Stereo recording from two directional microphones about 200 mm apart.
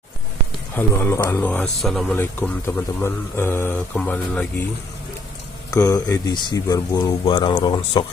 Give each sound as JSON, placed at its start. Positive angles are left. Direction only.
{"t": 0.7, "sound": "a man's voice", "side_deg": 10}
{"t": 5.7, "sound": "speech", "side_deg": 15}